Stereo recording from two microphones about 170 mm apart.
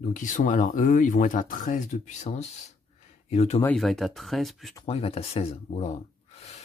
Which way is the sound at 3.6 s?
Centre (ahead or behind).